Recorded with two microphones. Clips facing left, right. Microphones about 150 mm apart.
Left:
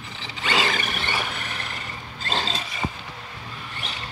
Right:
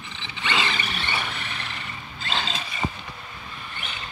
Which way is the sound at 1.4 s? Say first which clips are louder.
Left 1 dB; 45° left (ahead or behind).